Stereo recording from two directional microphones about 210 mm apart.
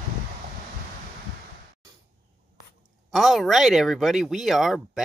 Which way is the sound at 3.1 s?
Centre (ahead or behind).